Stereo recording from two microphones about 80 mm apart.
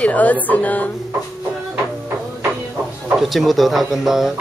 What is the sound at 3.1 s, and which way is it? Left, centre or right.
Speech, centre.